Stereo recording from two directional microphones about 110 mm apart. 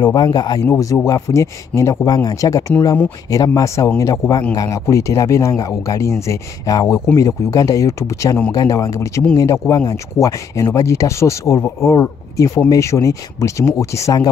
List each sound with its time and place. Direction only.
0.0 s speech: 40° left (ahead or behind)